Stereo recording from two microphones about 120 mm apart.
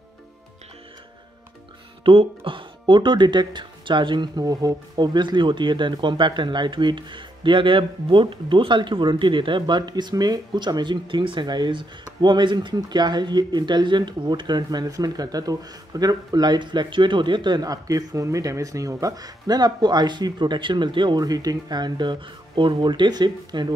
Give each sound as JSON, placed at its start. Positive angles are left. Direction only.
{"t": 2.0, "sound": "speech", "side_deg": -50}